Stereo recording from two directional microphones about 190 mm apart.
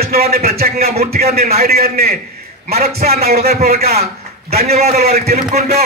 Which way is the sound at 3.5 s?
35° right (ahead or behind).